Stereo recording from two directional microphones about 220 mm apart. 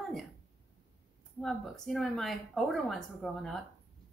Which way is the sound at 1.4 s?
Centre (ahead or behind).